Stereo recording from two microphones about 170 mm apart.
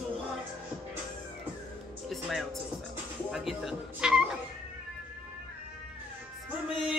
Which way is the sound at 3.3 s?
Centre (ahead or behind).